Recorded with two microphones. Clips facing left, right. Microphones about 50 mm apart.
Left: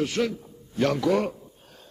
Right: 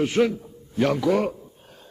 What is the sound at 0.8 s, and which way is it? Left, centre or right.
Speech, centre.